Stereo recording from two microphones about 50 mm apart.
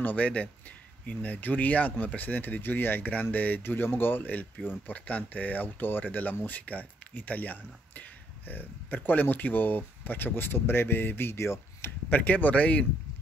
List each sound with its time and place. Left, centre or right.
0.0 s speech: left
12.1 s speech: left